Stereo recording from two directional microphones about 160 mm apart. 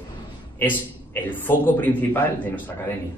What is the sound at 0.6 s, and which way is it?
A man's voice, 10° left (ahead or behind).